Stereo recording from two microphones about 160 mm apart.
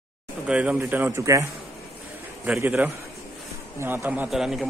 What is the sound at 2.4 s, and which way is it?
A man's voice, 5° right (ahead or behind).